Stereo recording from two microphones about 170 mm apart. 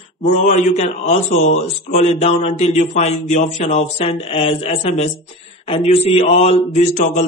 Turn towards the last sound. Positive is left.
turn(degrees=45)  # may be behind; listen again after turning